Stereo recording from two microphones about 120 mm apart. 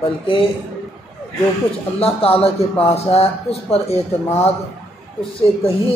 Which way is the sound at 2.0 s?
55° left (ahead or behind).